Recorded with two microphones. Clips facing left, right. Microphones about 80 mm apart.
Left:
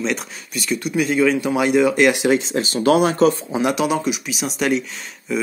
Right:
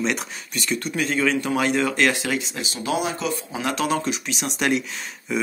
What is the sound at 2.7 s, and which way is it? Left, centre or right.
Speech, left.